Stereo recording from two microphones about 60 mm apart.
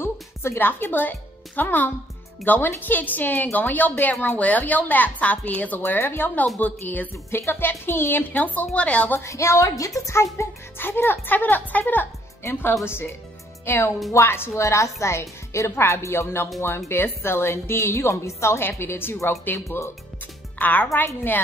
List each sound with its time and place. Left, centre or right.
0.0 s music: left
1.6 s a woman's voice: left
5.9 s a woman's voice: left
7.2 s a woman's voice: left
9.2 s a woman's voice: left
10.8 s a woman's voice: left
20.5 s a woman's voice: left